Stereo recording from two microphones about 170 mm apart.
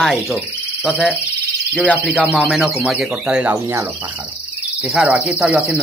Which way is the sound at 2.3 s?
5° right (ahead or behind).